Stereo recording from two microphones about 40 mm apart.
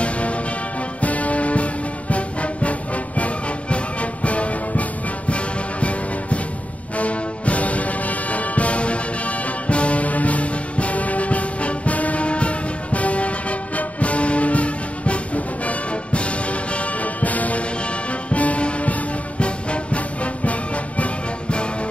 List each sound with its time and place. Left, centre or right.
0.0 s music: left
3.7 s music: left